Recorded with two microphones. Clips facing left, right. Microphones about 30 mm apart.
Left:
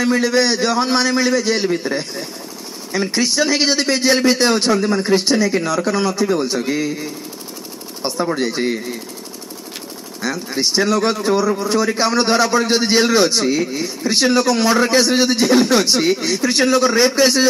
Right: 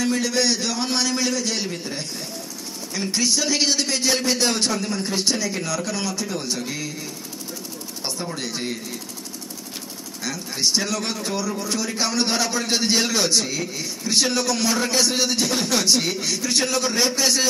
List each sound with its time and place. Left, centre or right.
0.0 s a man's voice: left
8.4 s a man's voice: centre
10.2 s a man's voice: centre